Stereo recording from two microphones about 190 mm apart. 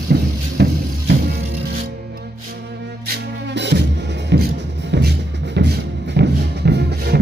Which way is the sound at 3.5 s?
65° right (ahead or behind).